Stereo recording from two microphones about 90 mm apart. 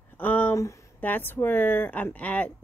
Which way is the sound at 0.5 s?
35° left (ahead or behind).